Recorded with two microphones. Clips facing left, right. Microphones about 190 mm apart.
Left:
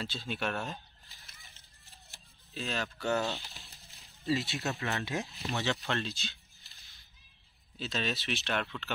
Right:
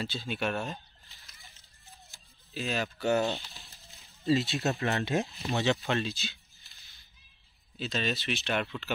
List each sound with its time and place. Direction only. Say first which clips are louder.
0.0 s speech: right 3 dB; centre (ahead or behind)
2.5 s speech: right 4 dB; 5° right (ahead or behind)
3.2 s speech: right 4 dB; 20° right (ahead or behind)
3.6 s a sound: right 1 dB; centre (ahead or behind)
3.9 s a sound: right 5 dB; 25° right (ahead or behind)
4.7 s speech: right 5 dB; 40° right (ahead or behind)
5.0 s speech: right 6 dB; 25° right (ahead or behind); by 6.8 s 5° right (ahead or behind)
7.8 s speech: right 3 dB; centre (ahead or behind)